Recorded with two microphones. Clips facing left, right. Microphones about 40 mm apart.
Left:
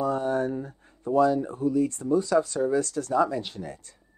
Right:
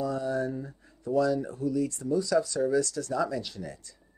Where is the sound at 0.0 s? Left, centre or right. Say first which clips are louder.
Left 4 dB; left.